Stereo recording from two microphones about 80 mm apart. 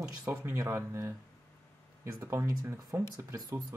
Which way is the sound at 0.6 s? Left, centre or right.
Right.